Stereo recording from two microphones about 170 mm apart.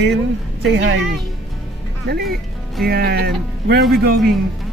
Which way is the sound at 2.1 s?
65° right (ahead or behind).